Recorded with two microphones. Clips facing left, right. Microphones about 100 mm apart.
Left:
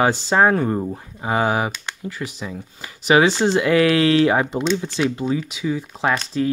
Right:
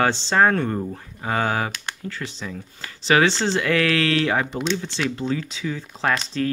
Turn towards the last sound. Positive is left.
turn(degrees=5)  # may be behind; listen again after turning